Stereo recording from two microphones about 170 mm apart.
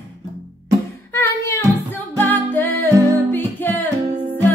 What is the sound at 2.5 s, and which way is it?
Music, 10° left (ahead or behind).